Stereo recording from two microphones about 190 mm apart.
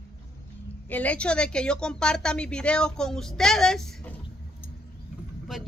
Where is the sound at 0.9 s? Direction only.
5° left (ahead or behind).